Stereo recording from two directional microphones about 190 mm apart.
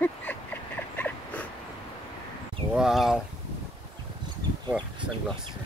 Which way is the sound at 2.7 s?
Centre (ahead or behind).